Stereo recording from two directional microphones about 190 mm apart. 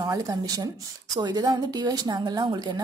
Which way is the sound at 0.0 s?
20° right (ahead or behind).